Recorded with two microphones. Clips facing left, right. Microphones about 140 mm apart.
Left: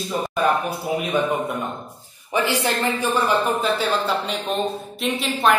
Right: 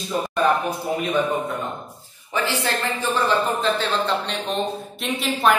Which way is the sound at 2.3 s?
15° left (ahead or behind).